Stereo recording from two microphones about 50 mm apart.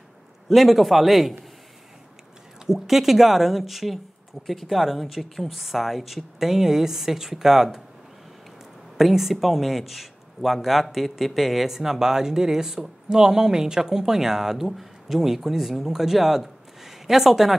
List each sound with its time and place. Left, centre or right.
0.5 s speech: centre
2.6 s speech: centre
8.9 s a man's voice: centre